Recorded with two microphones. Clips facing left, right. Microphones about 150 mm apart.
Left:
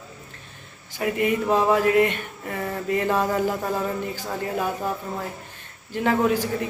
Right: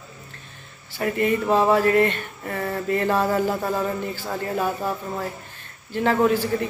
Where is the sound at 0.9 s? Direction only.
10° left (ahead or behind).